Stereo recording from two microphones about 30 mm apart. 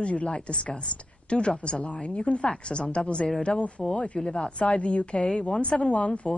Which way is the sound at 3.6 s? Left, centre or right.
Left.